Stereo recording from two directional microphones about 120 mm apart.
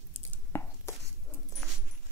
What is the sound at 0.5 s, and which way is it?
Chopping, 15° left (ahead or behind).